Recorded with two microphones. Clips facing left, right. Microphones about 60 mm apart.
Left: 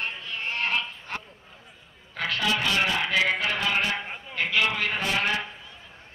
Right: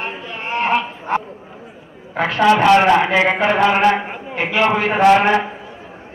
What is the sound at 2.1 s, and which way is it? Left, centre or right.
Speech, right.